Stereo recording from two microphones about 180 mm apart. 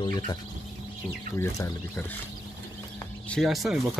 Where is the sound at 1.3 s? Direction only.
15° left (ahead or behind).